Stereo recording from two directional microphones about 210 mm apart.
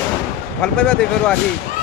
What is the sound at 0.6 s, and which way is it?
Speech, 5° left (ahead or behind).